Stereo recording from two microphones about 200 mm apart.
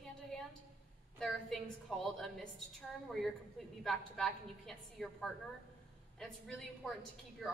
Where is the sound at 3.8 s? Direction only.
Centre (ahead or behind).